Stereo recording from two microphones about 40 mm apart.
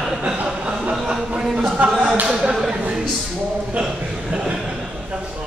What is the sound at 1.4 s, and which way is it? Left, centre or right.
A man's voice, centre.